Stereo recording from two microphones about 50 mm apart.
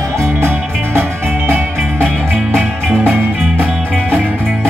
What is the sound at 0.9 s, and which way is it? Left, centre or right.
Music, right.